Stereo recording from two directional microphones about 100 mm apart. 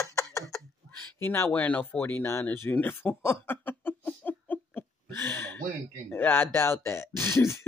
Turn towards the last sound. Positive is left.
turn(degrees=25)  # may be behind; listen again after turning